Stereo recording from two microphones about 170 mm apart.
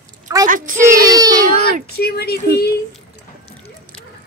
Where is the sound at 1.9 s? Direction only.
65° left (ahead or behind).